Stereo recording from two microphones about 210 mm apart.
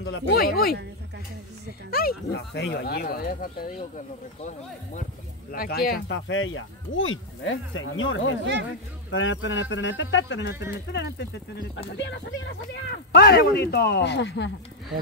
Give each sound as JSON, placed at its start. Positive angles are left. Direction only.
{"t": 0.0, "sound": "speech", "side_deg": 55}
{"t": 1.9, "sound": "speech", "side_deg": 45}
{"t": 5.5, "sound": "a man's voice", "side_deg": 45}